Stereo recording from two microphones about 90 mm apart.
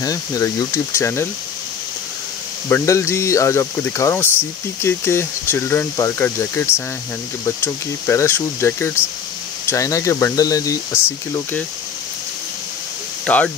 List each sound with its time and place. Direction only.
0.0 s speech: 40° left (ahead or behind)
2.7 s speech: 30° left (ahead or behind)
10.9 s speech: 25° left (ahead or behind)
13.2 s speech: 15° left (ahead or behind)